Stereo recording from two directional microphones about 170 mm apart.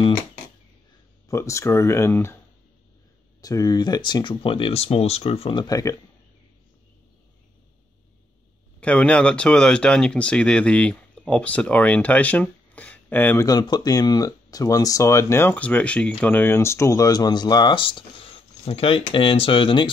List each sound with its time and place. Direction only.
1.3 s speech: 15° left (ahead or behind)
3.3 s speech: 20° left (ahead or behind)
8.8 s speech: 5° left (ahead or behind); by 19.9 s 30° left (ahead or behind)